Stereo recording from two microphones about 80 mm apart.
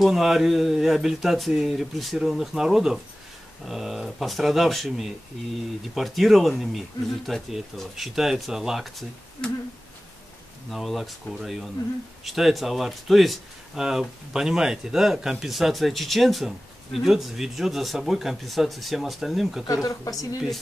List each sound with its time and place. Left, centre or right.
0.0 s speech: centre
10.7 s speech: centre
19.7 s speech: left